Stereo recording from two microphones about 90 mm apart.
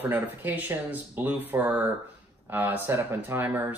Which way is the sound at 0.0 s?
20° right (ahead or behind).